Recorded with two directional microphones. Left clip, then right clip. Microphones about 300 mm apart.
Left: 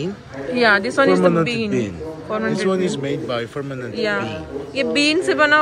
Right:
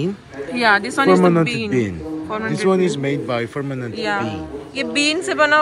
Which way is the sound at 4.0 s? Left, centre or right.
Centre.